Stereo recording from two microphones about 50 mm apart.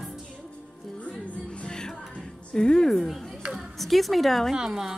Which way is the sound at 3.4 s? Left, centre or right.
Right.